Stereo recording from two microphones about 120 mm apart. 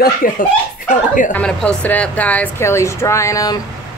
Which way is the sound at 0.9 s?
90° left.